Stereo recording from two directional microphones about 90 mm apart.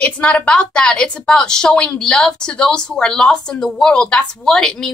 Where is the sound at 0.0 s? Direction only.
10° left (ahead or behind).